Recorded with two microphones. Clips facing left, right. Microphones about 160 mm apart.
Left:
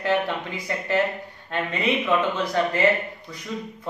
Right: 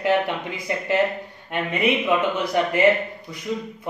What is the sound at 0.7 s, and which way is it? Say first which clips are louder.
Speech: right 2 dB; 20° right (ahead or behind).